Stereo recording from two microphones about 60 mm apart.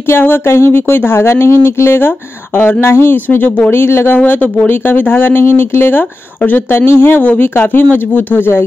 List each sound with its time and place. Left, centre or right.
0.1 s speech: left
3.3 s speech: left
3.7 s speech: left